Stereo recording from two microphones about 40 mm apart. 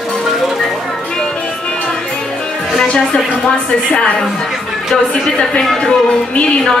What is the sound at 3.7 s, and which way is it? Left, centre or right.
Speech, left.